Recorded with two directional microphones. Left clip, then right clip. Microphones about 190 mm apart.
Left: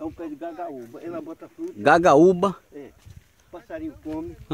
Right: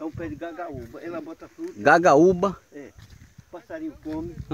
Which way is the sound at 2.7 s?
10° right (ahead or behind).